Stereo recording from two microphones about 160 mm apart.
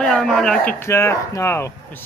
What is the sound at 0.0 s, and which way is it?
Speech, 5° left (ahead or behind).